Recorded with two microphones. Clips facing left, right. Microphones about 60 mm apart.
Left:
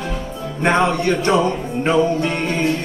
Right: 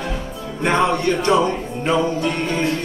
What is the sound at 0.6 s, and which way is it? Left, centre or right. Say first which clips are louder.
Music: left 1 dB; left.